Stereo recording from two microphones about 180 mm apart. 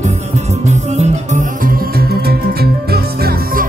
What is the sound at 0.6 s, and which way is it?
Music, 40° right (ahead or behind).